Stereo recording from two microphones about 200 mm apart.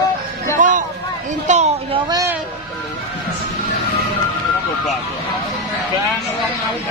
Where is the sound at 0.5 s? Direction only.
40° right (ahead or behind).